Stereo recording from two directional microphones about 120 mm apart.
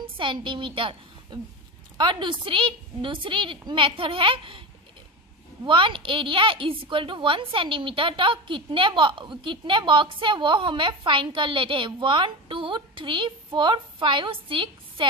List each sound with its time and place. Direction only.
0.0 s a woman's voice: 45° right (ahead or behind)
5.7 s a woman's voice: 45° right (ahead or behind)